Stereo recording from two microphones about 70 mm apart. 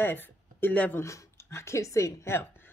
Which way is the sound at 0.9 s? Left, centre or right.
Left.